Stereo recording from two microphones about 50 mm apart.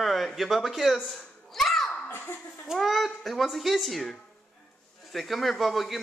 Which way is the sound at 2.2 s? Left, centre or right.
Left.